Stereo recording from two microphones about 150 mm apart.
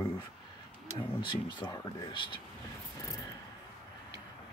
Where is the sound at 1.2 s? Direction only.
30° left (ahead or behind).